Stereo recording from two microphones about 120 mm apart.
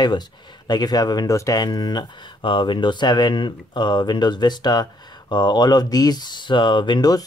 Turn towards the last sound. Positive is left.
turn(degrees=35)  # may be behind; listen again after turning